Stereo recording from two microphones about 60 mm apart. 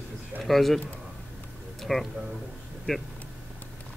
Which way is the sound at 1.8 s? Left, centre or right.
Centre.